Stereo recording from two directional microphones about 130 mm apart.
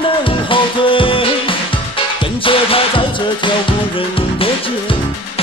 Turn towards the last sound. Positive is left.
turn(degrees=45)  # may be behind; listen again after turning